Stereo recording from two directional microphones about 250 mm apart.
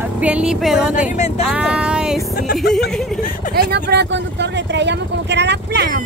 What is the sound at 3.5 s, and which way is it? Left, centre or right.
Speech, right.